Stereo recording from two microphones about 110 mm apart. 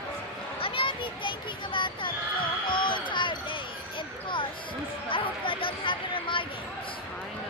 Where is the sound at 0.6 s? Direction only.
55° left (ahead or behind).